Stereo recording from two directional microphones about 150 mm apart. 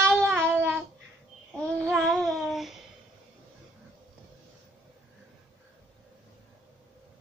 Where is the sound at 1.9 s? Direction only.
Centre (ahead or behind).